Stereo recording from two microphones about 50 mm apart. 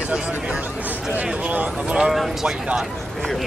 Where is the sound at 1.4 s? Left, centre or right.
Right.